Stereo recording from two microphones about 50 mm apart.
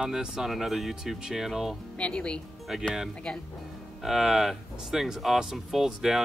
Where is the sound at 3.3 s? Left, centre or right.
Centre.